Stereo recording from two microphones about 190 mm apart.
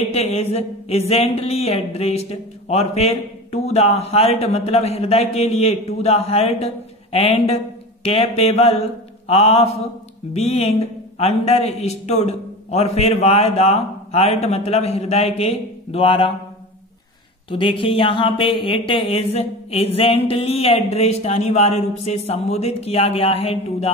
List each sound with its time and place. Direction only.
0.0 s a man's voice: 35° left (ahead or behind)
17.5 s a man's voice: 25° left (ahead or behind)